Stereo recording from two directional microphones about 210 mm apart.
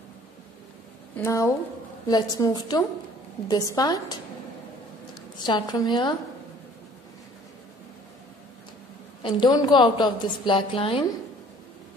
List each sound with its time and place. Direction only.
1.1 s a woman's voice: 15° left (ahead or behind)
5.4 s a woman's voice: 20° left (ahead or behind)
9.2 s a woman's voice: 20° left (ahead or behind)